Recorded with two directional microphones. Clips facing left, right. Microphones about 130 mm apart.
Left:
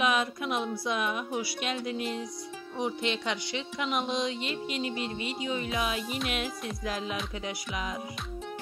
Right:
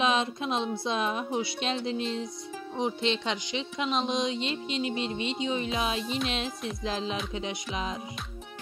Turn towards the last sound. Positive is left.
turn(degrees=-25)  # may be behind; listen again after turning